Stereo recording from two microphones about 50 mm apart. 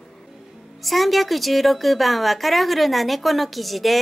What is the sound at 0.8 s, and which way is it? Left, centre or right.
Speech, centre.